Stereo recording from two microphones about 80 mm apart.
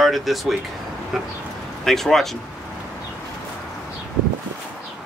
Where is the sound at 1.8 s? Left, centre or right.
Centre.